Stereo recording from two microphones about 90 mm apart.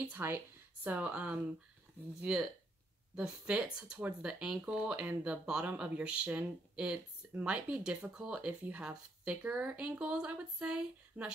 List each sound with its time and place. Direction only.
0.1 s a woman's voice: 25° right (ahead or behind)
3.2 s speech: 10° right (ahead or behind)